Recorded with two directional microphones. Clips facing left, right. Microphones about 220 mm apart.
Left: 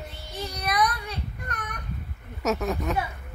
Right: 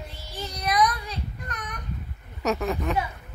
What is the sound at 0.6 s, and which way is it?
Child singing, 60° left (ahead or behind).